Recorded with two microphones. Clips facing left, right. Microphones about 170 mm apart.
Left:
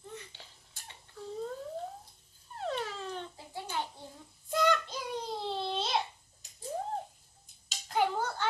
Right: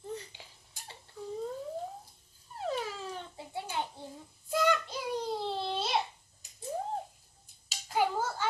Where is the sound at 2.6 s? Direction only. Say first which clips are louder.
Right 1 dB; 5° right (ahead or behind).